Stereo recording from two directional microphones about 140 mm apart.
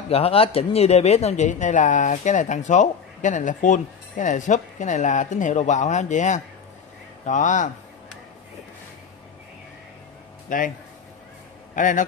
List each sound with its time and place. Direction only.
0.1 s speech: 45° left (ahead or behind); by 7.7 s 65° left (ahead or behind)
10.5 s speech: 70° left (ahead or behind)
11.7 s a man's voice: 65° left (ahead or behind)